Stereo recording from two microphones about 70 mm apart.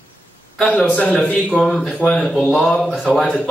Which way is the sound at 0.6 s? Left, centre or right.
Centre.